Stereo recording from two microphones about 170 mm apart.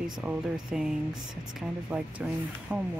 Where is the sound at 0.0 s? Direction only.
5° right (ahead or behind).